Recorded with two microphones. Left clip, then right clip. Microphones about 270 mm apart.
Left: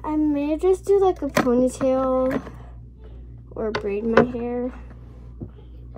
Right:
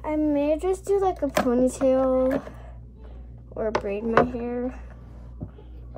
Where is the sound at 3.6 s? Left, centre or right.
Centre.